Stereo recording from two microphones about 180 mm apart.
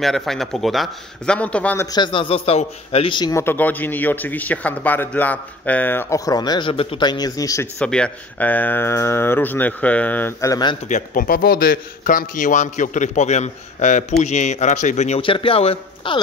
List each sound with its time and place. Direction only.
0.0 s speech: centre (ahead or behind)
1.9 s a man's voice: 25° left (ahead or behind)
7.8 s speech: 5° left (ahead or behind); by 10.8 s 20° left (ahead or behind)
10.9 s a man's voice: 45° left (ahead or behind); by 16.2 s 30° left (ahead or behind)